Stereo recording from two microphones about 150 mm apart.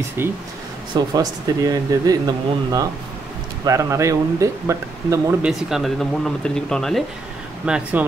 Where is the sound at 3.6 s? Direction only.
20° right (ahead or behind).